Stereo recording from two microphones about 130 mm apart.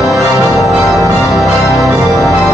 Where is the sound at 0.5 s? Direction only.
Centre (ahead or behind).